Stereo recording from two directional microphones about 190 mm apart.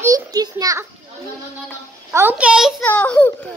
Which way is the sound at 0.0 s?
20° right (ahead or behind).